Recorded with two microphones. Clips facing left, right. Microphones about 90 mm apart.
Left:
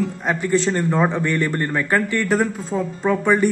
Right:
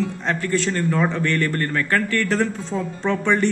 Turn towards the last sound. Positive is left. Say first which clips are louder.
# left 3 dB
turn(degrees=10)  # may be behind; listen again after turning